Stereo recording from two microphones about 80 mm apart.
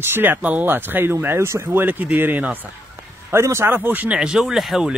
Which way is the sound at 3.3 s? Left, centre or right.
Right.